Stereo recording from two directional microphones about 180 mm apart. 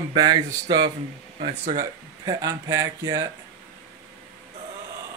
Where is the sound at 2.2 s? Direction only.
20° right (ahead or behind).